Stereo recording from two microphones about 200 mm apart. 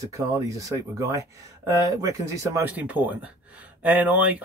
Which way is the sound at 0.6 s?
15° right (ahead or behind).